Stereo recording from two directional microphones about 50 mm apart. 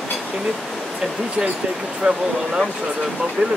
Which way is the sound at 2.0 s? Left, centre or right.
Centre.